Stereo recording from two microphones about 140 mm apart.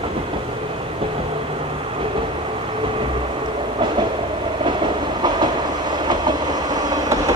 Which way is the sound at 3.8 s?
35° right (ahead or behind).